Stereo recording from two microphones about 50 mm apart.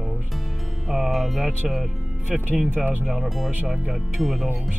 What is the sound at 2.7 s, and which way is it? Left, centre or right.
Speech, right.